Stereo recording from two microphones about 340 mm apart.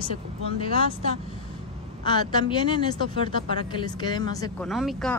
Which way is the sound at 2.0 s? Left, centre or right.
Centre.